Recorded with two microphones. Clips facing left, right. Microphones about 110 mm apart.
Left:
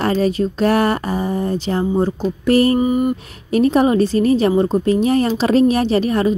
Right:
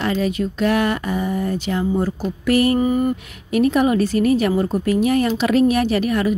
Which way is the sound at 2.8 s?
15° left (ahead or behind).